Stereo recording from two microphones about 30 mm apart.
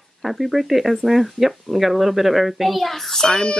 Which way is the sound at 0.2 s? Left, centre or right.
Centre.